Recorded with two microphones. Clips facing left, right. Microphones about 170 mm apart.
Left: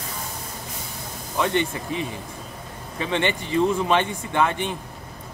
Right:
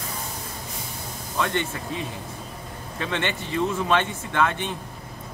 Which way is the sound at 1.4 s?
15° left (ahead or behind).